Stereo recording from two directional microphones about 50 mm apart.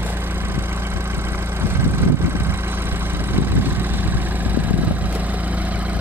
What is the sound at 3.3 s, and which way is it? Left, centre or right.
Vehicle, right.